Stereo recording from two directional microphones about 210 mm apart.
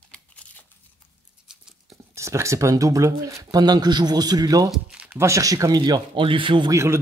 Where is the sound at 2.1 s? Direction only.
15° right (ahead or behind).